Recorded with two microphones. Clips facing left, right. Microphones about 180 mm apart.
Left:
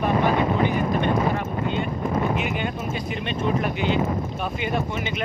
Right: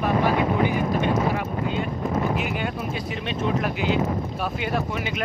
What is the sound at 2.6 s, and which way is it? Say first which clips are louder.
Speech: even; centre (ahead or behind).